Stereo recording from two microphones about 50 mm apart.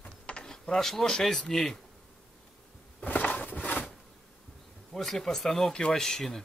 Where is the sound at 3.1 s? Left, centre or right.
Left.